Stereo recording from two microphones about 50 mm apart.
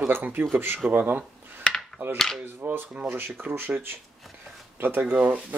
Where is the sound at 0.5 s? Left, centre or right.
Right.